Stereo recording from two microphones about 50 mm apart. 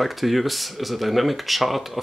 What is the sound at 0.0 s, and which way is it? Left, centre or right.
Speech, centre.